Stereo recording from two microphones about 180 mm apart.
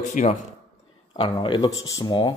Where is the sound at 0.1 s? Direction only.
40° left (ahead or behind).